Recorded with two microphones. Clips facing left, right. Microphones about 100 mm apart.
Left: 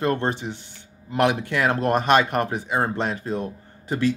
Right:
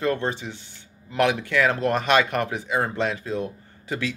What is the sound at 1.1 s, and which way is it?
Speech, 45° left (ahead or behind).